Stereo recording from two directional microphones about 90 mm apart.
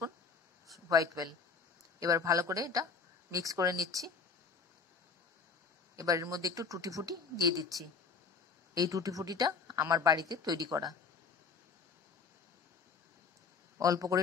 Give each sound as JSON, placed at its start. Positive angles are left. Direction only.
{"t": 0.8, "sound": "speech", "side_deg": -40}
{"t": 5.9, "sound": "speech", "side_deg": -35}
{"t": 8.7, "sound": "speech", "side_deg": -40}
{"t": 13.7, "sound": "speech", "side_deg": -40}